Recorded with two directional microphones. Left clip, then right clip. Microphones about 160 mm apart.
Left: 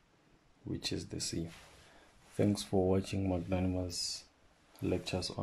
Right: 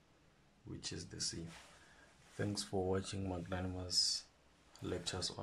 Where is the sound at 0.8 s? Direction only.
25° left (ahead or behind).